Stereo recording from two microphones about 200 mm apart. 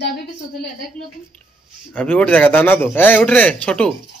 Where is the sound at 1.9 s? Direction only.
5° left (ahead or behind).